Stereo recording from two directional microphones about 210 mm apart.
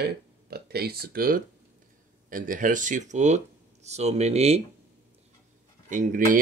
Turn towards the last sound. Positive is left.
turn(degrees=-40)  # may be behind; listen again after turning